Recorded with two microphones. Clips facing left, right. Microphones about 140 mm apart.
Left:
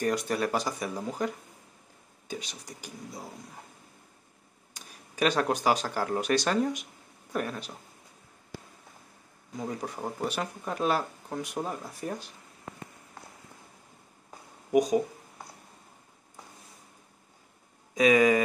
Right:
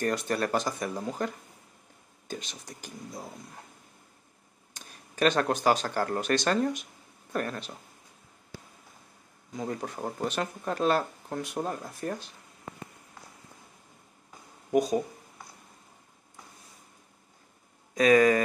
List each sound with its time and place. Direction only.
0.0 s speech: 10° left (ahead or behind)
4.7 s speech: 10° left (ahead or behind)
9.6 s speech: 5° left (ahead or behind)
14.7 s speech: 15° left (ahead or behind)
17.9 s speech: 10° left (ahead or behind)